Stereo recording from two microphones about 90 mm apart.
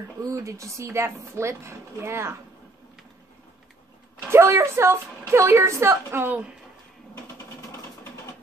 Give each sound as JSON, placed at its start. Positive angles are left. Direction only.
{"t": 0.2, "sound": "speech", "side_deg": -35}
{"t": 4.3, "sound": "a woman's voice", "side_deg": -30}